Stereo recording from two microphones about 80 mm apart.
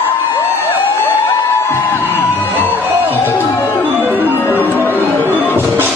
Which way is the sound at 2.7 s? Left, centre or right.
Right.